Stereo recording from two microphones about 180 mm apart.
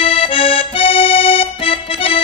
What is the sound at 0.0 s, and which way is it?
Accordion, 30° left (ahead or behind).